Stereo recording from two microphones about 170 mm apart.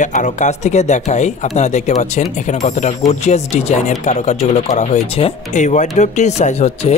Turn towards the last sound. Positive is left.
turn(degrees=40)  # may be behind; listen again after turning